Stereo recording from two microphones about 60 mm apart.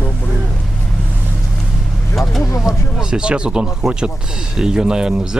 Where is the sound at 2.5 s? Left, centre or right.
Left.